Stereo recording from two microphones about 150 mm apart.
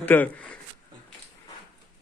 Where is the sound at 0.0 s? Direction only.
10° left (ahead or behind).